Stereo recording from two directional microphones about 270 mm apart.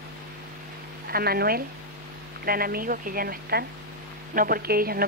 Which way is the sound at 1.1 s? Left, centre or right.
Right.